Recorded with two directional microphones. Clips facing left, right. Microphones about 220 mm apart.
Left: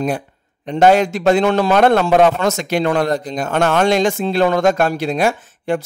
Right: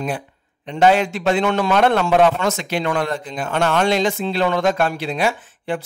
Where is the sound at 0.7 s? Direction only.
45° left (ahead or behind).